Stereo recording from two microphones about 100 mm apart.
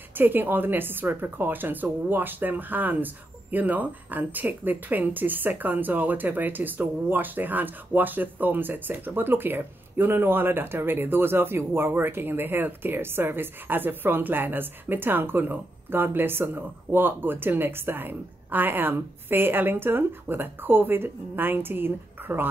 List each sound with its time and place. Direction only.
0.1 s speech: 20° right (ahead or behind)